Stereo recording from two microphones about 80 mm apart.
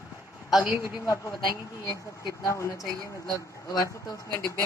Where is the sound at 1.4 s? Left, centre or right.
Left.